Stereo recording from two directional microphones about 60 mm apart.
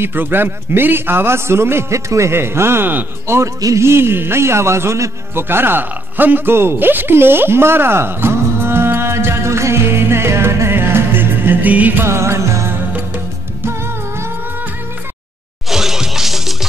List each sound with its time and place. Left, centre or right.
0.0 s a man's voice: right
3.3 s a man's voice: right
3.8 s music: right
12.0 s music: right
15.7 s music: centre